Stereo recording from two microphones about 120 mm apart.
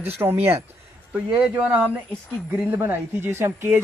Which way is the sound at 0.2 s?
20° right (ahead or behind).